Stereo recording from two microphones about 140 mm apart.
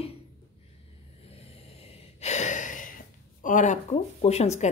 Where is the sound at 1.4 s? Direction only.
45° left (ahead or behind); by 2.9 s 70° left (ahead or behind).